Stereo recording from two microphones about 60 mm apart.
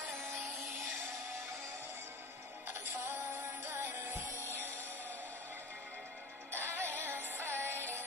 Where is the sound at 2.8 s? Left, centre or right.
Right.